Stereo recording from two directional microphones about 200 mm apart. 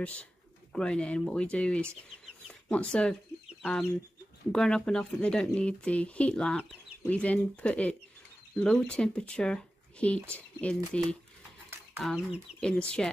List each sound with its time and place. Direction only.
0.0 s speech: 5° left (ahead or behind)
4.5 s speech: 5° left (ahead or behind)